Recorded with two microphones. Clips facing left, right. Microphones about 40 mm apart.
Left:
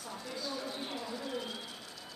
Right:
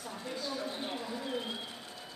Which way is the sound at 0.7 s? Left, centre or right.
Right.